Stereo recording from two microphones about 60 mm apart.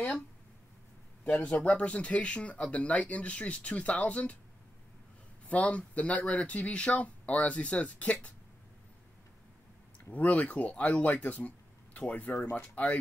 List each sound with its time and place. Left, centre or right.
1.2 s speech: left
5.5 s speech: left
10.1 s speech: left